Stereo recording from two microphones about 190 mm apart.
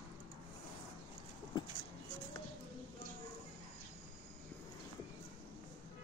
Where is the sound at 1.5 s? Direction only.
25° left (ahead or behind).